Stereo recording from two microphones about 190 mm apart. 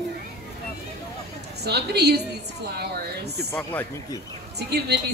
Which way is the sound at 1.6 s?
60° right (ahead or behind).